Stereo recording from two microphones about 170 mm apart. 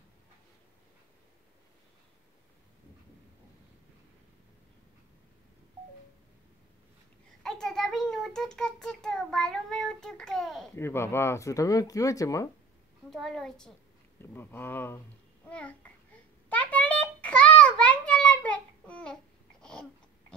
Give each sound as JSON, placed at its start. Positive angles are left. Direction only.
{"t": 7.4, "sound": "a child's voice", "side_deg": 5}
{"t": 10.8, "sound": "speech", "side_deg": 15}
{"t": 13.1, "sound": "a woman's voice", "side_deg": 0}
{"t": 16.4, "sound": "a sound", "side_deg": 10}
{"t": 19.6, "sound": "babbling", "side_deg": 5}